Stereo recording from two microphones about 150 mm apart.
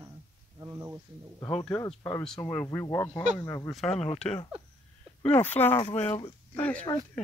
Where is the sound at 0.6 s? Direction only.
20° right (ahead or behind).